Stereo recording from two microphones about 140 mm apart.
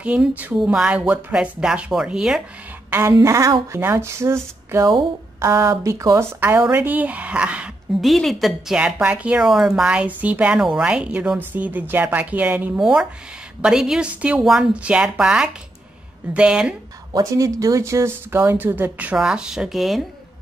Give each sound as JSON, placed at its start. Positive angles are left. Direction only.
{"t": 0.0, "sound": "speech", "side_deg": -10}
{"t": 2.9, "sound": "a woman's voice", "side_deg": -20}
{"t": 17.1, "sound": "speech", "side_deg": -25}